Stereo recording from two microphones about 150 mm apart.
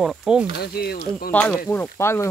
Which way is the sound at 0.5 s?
90° left.